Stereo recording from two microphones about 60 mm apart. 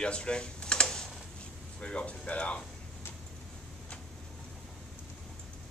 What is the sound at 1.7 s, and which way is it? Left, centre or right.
Speech, centre.